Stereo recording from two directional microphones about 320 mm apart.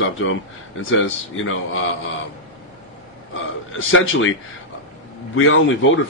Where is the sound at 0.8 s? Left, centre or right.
Left.